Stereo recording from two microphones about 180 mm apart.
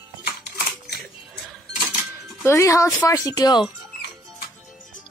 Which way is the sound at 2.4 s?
15° left (ahead or behind).